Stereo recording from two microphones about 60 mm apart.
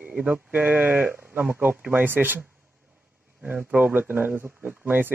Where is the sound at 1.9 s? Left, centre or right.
Right.